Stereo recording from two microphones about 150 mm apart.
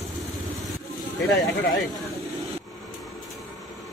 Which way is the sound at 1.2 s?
Centre (ahead or behind).